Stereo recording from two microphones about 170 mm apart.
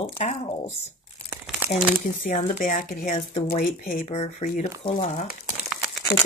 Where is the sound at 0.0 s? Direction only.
35° left (ahead or behind).